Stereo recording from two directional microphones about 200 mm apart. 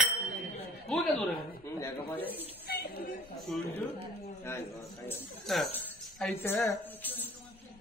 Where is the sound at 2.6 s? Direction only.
55° left (ahead or behind).